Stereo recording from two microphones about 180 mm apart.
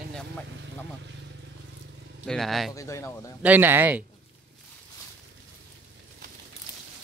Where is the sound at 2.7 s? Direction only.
15° left (ahead or behind).